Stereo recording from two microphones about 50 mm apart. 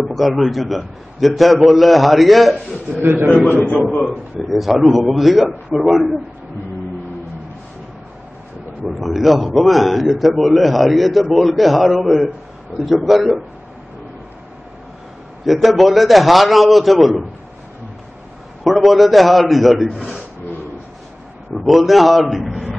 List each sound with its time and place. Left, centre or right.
0.0 s a man's voice: centre
3.0 s a man's voice: right
4.4 s a man's voice: centre
8.8 s a man's voice: centre
15.4 s a man's voice: centre
18.6 s a man's voice: centre
21.5 s a man's voice: centre